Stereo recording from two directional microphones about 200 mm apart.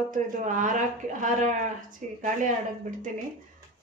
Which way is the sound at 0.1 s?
40° right (ahead or behind).